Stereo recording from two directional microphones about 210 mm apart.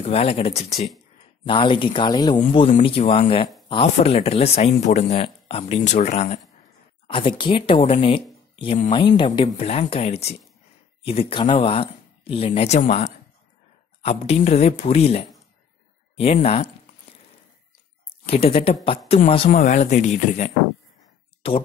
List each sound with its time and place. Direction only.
0.0 s speech: 30° left (ahead or behind)
18.1 s speech: 25° left (ahead or behind)